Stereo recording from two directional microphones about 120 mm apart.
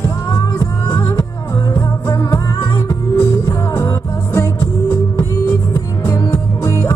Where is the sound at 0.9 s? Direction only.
25° left (ahead or behind).